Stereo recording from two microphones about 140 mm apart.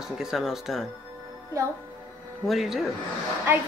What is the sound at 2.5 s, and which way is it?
Speech, centre (ahead or behind).